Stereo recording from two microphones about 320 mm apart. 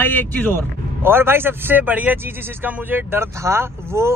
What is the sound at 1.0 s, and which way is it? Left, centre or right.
Speech, centre.